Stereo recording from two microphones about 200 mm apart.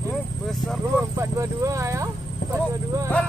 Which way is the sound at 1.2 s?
15° right (ahead or behind).